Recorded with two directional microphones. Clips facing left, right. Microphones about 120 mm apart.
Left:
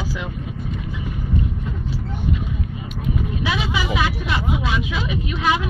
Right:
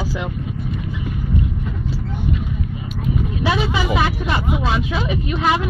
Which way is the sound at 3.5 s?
35° right (ahead or behind).